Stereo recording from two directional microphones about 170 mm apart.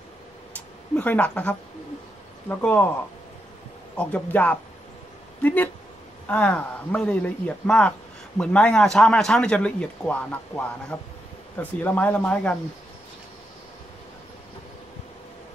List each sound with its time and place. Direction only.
0.6 s a man's voice: 10° left (ahead or behind)
3.9 s a man's voice: 5° left (ahead or behind)